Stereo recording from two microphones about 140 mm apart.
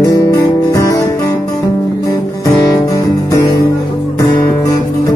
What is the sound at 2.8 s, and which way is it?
Music, 25° left (ahead or behind).